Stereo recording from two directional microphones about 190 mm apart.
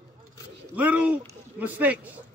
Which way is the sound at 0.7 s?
10° right (ahead or behind).